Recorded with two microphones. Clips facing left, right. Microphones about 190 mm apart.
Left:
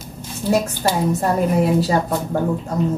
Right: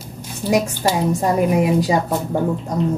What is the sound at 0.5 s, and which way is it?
A woman's voice, 15° right (ahead or behind).